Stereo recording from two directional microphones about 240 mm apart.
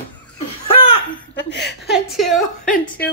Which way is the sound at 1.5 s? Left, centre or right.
Left.